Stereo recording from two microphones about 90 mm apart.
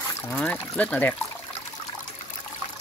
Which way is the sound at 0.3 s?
15° left (ahead or behind).